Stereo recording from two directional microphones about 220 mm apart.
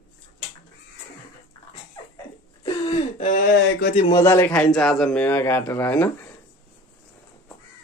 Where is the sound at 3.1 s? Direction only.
35° left (ahead or behind).